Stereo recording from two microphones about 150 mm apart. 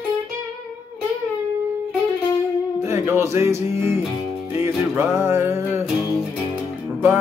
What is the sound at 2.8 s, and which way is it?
Music, 15° right (ahead or behind).